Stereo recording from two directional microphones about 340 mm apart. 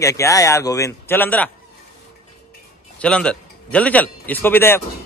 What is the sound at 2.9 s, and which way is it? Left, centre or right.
Speech, centre.